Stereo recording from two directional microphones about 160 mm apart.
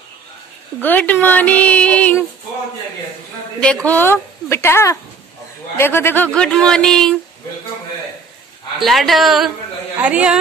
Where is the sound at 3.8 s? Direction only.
10° left (ahead or behind).